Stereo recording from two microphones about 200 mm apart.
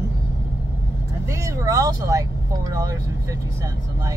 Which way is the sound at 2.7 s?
20° right (ahead or behind).